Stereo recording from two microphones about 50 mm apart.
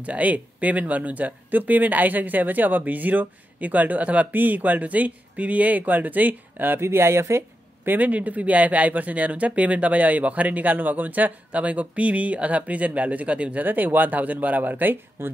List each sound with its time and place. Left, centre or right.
0.0 s speech: right
7.8 s speech: right
13.7 s speech: right
15.2 s speech: right